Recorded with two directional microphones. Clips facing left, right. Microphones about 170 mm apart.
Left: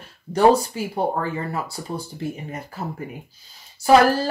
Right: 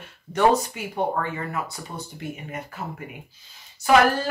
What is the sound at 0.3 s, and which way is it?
Speech, 35° left (ahead or behind).